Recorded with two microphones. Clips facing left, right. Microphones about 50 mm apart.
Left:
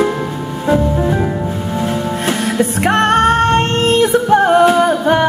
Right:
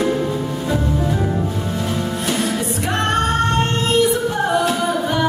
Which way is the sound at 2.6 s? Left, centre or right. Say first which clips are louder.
Left 8 dB; left.